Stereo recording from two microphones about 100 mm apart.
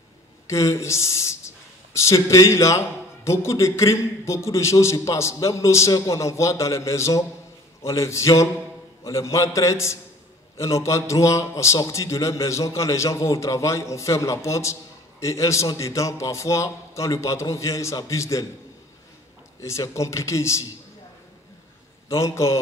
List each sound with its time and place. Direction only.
0.5 s a man's voice: 30° left (ahead or behind)
19.6 s a man's voice: 30° left (ahead or behind)
22.1 s a man's voice: 30° left (ahead or behind)